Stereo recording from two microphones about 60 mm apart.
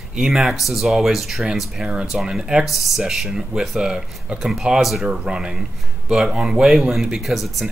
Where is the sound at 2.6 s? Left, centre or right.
Centre.